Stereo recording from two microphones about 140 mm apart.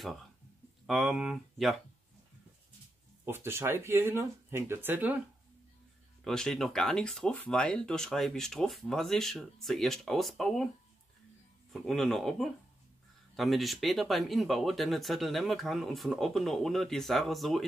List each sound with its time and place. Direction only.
0.8 s speech: centre (ahead or behind)
3.3 s speech: 15° right (ahead or behind)
6.2 s speech: 5° left (ahead or behind)
11.7 s speech: centre (ahead or behind)